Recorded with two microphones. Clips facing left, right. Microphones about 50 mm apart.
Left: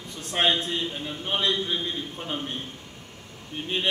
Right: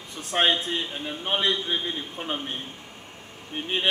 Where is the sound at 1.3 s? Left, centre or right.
Right.